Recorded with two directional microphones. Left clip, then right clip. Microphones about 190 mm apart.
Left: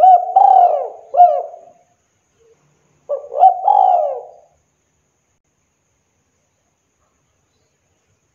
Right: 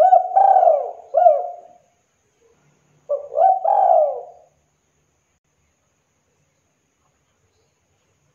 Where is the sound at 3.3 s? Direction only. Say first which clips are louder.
Left 5 dB; 25° left (ahead or behind).